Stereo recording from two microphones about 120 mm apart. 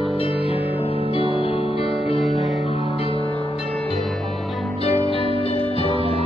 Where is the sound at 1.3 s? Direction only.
50° left (ahead or behind).